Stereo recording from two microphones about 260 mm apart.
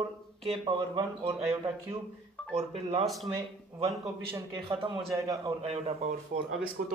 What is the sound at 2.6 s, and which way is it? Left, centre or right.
Speech, right.